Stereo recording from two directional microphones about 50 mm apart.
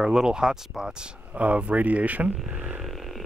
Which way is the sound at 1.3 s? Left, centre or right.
Right.